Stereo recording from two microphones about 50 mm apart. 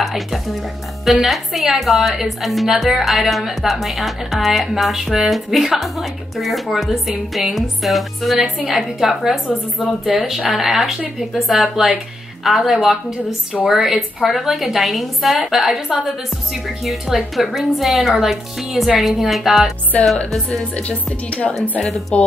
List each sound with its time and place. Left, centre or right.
0.0 s music: centre
1.0 s a woman's voice: centre
20.4 s speech: left